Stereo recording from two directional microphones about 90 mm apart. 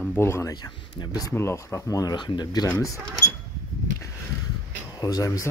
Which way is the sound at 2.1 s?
55° left (ahead or behind).